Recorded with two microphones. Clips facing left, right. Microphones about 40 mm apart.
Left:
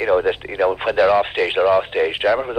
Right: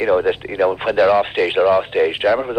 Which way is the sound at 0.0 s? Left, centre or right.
Centre.